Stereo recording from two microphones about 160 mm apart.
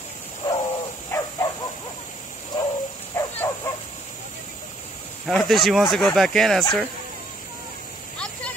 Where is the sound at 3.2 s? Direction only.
20° left (ahead or behind).